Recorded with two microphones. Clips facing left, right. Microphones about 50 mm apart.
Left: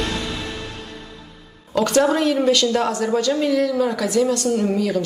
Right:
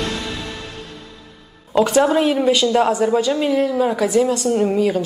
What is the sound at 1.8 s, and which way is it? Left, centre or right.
A woman's voice, centre.